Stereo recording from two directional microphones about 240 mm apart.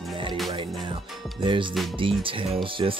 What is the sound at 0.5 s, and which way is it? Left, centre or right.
Music, centre.